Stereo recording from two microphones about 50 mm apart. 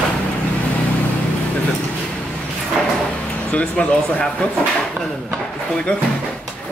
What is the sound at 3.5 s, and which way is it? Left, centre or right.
Speech, left.